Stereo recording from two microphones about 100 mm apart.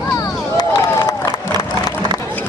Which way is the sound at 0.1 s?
40° left (ahead or behind).